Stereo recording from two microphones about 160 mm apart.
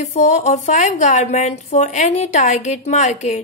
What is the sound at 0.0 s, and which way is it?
Speech, 50° left (ahead or behind).